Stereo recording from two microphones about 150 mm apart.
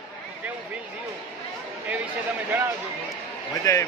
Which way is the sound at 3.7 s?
20° left (ahead or behind).